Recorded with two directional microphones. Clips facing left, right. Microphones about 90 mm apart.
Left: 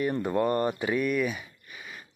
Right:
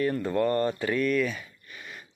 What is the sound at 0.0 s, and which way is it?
Speech, 15° left (ahead or behind).